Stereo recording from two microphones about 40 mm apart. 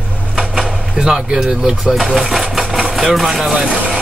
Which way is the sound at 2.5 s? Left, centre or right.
Centre.